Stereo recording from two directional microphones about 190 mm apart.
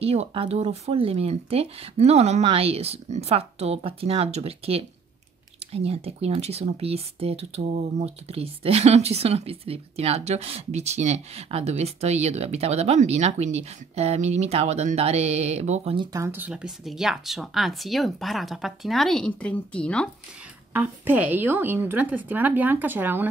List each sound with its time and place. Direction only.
0.0 s speech: 30° right (ahead or behind)
16.1 s speech: 15° right (ahead or behind); by 20.1 s 5° left (ahead or behind)
20.7 s a woman's voice: 10° right (ahead or behind)